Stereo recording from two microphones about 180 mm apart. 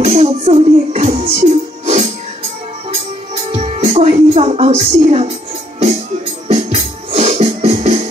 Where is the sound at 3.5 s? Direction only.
35° right (ahead or behind).